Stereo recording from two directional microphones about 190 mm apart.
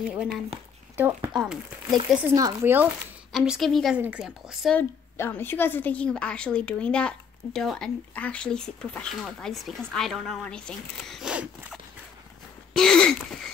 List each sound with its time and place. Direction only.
0.0 s a woman's voice: 5° right (ahead or behind)
2.0 s speech: 20° right (ahead or behind)
3.3 s a woman's voice: centre (ahead or behind)
4.7 s a woman's voice: 10° left (ahead or behind)
11.1 s zipper: 5° right (ahead or behind)
12.7 s a woman's voice: 5° left (ahead or behind)